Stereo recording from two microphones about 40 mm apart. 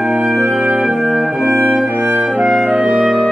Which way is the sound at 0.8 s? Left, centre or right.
Centre.